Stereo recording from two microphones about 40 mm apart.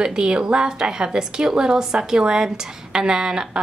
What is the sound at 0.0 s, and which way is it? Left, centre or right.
A woman's voice, right.